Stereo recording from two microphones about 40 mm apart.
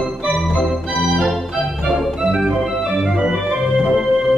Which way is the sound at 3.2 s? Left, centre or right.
Centre.